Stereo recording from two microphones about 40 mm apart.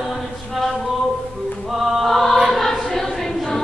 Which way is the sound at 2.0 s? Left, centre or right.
Centre.